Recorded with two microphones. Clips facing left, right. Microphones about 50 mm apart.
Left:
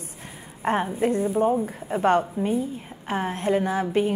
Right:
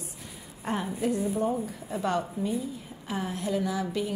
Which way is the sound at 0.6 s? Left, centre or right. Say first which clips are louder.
Left 7 dB; left.